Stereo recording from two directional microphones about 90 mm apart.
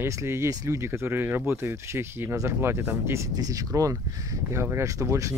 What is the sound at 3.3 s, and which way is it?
Speech, 40° right (ahead or behind).